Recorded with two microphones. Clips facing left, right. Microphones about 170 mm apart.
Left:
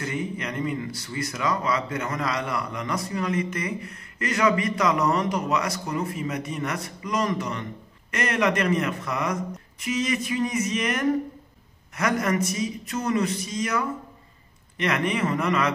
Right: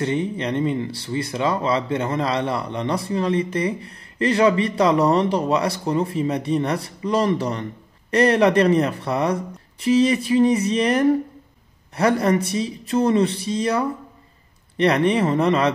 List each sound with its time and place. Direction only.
0.0 s speech: 30° right (ahead or behind)